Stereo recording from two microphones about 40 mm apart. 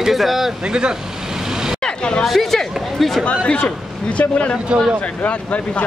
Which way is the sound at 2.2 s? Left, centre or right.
Centre.